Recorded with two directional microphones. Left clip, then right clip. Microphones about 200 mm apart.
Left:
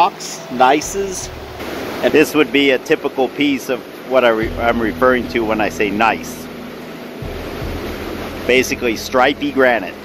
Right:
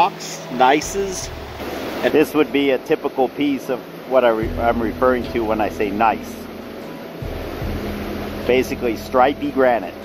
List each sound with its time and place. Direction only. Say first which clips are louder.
0.6 s speech: left 2 dB; 10° left (ahead or behind)
9.1 s speech: left 1 dB; 20° left (ahead or behind)